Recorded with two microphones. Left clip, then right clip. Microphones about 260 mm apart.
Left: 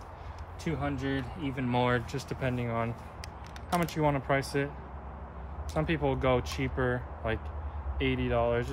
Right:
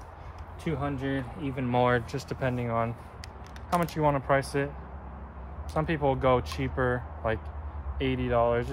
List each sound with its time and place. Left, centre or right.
0.7 s speech: centre
5.8 s speech: centre